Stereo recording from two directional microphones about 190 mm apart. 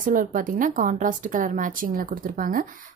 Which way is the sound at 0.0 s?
45° right (ahead or behind).